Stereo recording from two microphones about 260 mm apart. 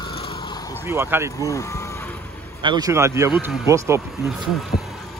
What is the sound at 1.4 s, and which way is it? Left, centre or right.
Speech, centre.